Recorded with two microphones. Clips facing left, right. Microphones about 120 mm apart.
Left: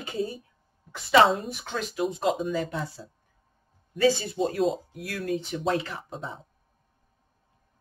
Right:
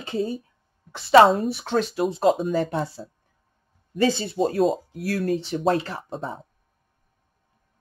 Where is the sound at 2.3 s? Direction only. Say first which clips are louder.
Right 4 dB; 45° right (ahead or behind).